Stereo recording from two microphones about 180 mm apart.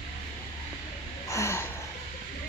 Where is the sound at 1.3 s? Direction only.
15° left (ahead or behind).